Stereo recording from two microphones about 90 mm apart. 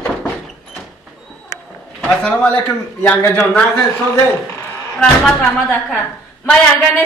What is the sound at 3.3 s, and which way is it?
Speech, 5° left (ahead or behind).